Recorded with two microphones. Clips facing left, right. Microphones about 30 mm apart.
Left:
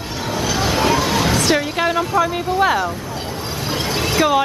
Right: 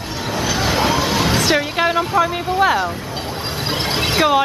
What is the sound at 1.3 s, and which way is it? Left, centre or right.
Music, centre.